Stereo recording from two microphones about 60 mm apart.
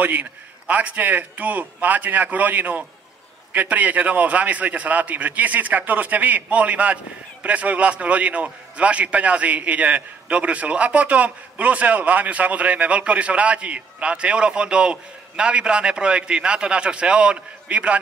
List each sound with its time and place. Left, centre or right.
0.0 s a man's voice: right